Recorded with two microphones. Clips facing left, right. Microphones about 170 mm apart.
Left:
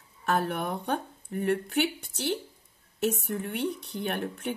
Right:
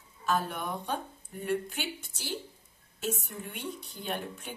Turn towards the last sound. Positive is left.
turn(degrees=60)  # may be behind; listen again after turning